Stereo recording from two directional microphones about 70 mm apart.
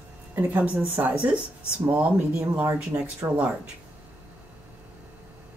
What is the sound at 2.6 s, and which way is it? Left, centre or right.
Speech, right.